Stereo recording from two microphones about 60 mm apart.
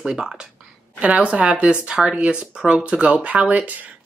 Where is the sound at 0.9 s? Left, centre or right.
Right.